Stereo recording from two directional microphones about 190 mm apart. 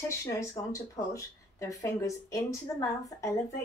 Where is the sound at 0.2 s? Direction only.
15° left (ahead or behind).